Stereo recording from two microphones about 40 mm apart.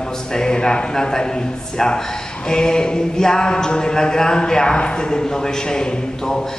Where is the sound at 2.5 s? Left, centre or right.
Centre.